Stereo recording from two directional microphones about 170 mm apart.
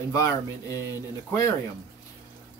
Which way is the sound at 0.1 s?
20° left (ahead or behind).